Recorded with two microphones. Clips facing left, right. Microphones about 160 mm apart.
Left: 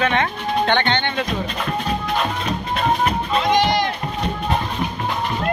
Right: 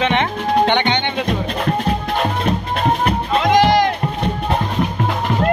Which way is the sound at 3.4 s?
90° right.